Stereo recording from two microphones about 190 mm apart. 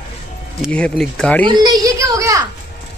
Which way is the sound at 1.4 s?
25° right (ahead or behind).